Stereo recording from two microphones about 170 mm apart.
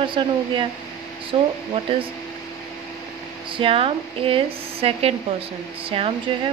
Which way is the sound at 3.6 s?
35° right (ahead or behind).